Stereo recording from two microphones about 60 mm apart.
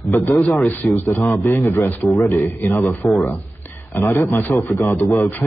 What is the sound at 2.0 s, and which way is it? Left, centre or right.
A man's voice, left.